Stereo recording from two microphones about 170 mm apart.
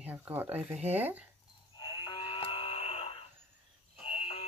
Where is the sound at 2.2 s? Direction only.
30° left (ahead or behind).